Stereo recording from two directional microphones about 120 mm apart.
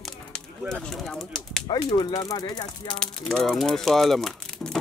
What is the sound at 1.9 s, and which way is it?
Speech, 40° left (ahead or behind).